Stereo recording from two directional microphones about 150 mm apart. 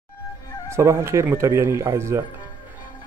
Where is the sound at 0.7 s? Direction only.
20° right (ahead or behind).